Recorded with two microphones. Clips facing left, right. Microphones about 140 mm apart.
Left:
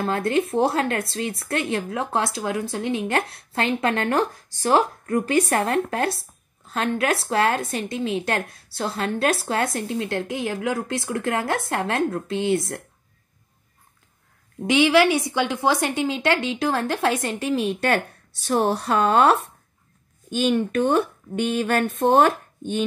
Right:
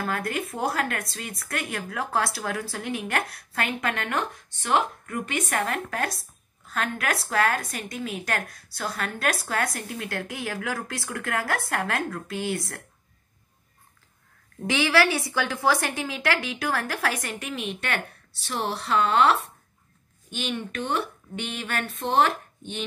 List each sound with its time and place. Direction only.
0.0 s speech: 25° left (ahead or behind)
14.6 s speech: 20° left (ahead or behind); by 22.8 s 45° left (ahead or behind)